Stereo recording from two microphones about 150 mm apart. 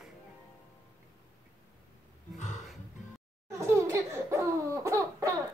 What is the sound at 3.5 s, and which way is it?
Laughter, 20° right (ahead or behind).